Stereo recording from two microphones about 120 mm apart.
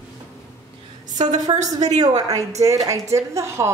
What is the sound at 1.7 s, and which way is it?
A woman's voice, 30° right (ahead or behind).